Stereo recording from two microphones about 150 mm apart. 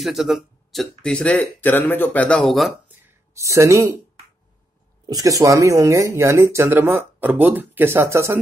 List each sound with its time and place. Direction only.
0.0 s speech: centre (ahead or behind)
3.1 s speech: 20° right (ahead or behind)
5.0 s speech: 25° right (ahead or behind)